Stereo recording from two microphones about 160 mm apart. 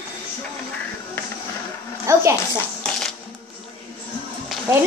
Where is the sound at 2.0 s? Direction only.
15° right (ahead or behind).